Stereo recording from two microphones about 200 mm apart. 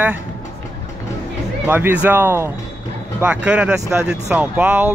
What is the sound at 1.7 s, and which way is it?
Speech, 10° right (ahead or behind).